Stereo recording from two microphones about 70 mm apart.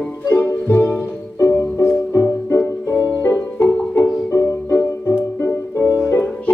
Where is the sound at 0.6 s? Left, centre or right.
Left.